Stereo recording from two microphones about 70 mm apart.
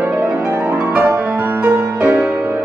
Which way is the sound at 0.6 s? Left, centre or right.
Right.